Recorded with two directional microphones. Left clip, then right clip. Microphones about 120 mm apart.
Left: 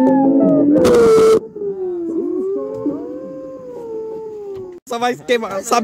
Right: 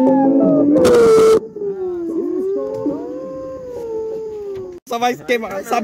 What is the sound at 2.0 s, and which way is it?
Howl, 65° left (ahead or behind).